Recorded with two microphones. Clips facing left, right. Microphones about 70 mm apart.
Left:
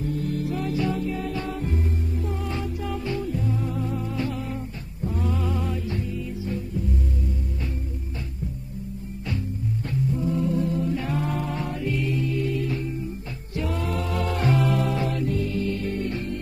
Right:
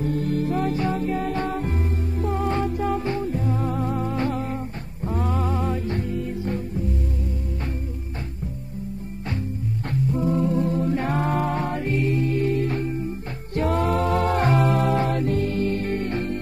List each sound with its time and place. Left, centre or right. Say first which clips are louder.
0.0 s music: right 4 dB; right
9.8 s music: right 3 dB; right